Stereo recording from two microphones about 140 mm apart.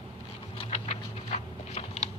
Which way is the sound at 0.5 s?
45° left (ahead or behind).